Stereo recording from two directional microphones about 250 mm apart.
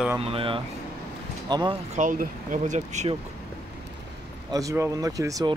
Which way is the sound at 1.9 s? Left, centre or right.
Right.